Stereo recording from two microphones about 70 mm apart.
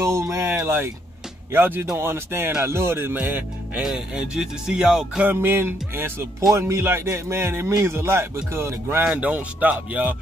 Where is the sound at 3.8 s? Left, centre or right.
Centre.